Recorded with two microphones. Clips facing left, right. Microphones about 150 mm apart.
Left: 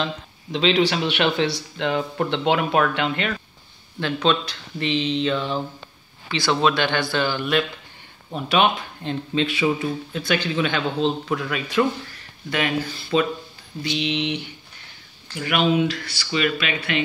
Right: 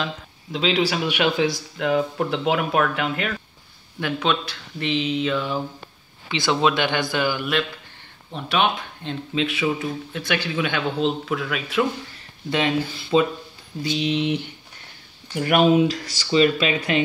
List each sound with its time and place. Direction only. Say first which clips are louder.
0.0 s a man's voice: left 2 dB; 5° right (ahead or behind)
6.2 s a man's voice: even; 20° right (ahead or behind)
8.3 s speech: left 2 dB; centre (ahead or behind)
12.4 s speech: right 2 dB; 20° right (ahead or behind)
13.8 s speech: right 2 dB; 20° left (ahead or behind)
14.1 s speech: right 3 dB; 45° right (ahead or behind)
15.9 s speech: right 5 dB; 35° right (ahead or behind)